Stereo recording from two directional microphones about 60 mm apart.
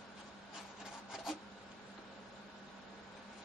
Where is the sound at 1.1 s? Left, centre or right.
Centre.